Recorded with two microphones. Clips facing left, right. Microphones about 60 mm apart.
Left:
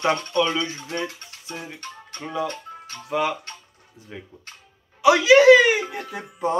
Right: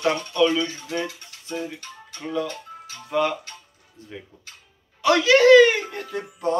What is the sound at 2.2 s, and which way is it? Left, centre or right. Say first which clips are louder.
Speech: even; centre.